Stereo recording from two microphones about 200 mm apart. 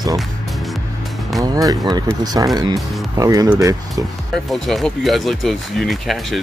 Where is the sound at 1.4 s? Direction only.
20° right (ahead or behind).